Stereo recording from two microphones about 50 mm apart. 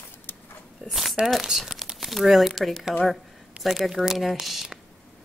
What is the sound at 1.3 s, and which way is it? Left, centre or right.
Speech, centre.